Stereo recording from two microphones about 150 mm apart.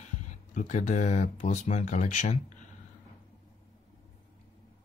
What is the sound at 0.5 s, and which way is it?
Speech, 55° left (ahead or behind).